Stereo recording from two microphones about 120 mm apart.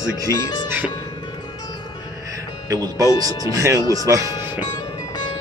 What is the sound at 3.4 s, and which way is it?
Speech, 25° right (ahead or behind).